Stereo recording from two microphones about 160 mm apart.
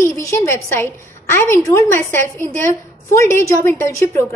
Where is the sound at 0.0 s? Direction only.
20° left (ahead or behind).